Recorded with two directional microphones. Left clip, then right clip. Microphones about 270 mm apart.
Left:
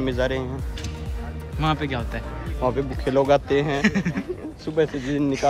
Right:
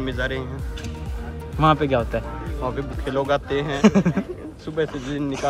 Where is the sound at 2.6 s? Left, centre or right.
Left.